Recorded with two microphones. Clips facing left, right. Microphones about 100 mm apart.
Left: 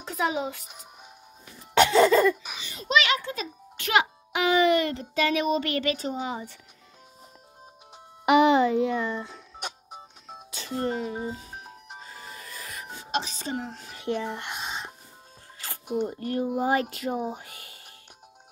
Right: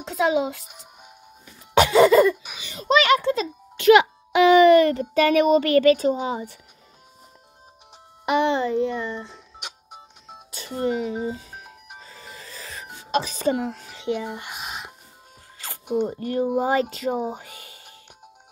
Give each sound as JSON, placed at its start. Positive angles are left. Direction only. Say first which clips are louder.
{"t": 0.7, "sound": "music", "louder": "right 1 dB", "side_deg": 0}
{"t": 1.8, "sound": "laughter", "louder": "right 4 dB", "side_deg": -10}
{"t": 2.6, "sound": "speech", "louder": "right 6 dB", "side_deg": -25}
{"t": 3.8, "sound": "a child's voice", "louder": "right 10 dB", "side_deg": -80}
{"t": 4.7, "sound": "child singing", "louder": "right 9 dB", "side_deg": -50}
{"t": 8.3, "sound": "a child's voice", "louder": "left 2 dB", "side_deg": 10}
{"t": 10.2, "sound": "telephone dialing", "louder": "right 2 dB", "side_deg": -5}
{"t": 10.8, "sound": "speech", "louder": "right 5 dB", "side_deg": -15}
{"t": 12.0, "sound": "music", "louder": "left 1 dB", "side_deg": 35}
{"t": 12.4, "sound": "music", "louder": "right 3 dB", "side_deg": -30}
{"t": 13.2, "sound": "child singing", "louder": "right 9 dB", "side_deg": -50}
{"t": 13.9, "sound": "a sound", "louder": "right 1 dB", "side_deg": -15}
{"t": 16.0, "sound": "speech", "louder": "right 4 dB", "side_deg": -20}